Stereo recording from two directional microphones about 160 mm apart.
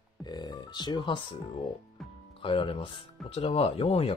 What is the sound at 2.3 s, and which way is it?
Speech, 35° left (ahead or behind).